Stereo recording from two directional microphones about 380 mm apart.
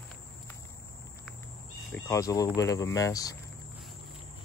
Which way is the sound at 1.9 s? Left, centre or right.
Centre.